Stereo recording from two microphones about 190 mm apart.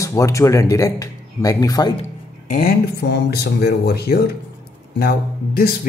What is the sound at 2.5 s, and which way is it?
Speech, 55° left (ahead or behind).